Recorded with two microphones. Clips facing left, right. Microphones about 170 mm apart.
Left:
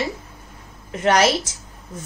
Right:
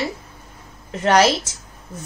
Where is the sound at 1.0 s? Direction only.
35° right (ahead or behind).